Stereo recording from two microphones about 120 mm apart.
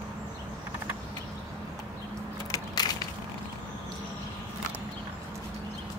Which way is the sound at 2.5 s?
35° left (ahead or behind).